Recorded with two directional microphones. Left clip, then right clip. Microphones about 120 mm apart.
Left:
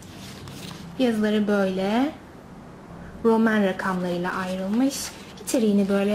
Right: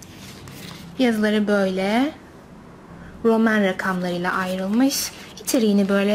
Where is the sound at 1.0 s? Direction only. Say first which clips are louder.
Right 3 dB; 40° right (ahead or behind).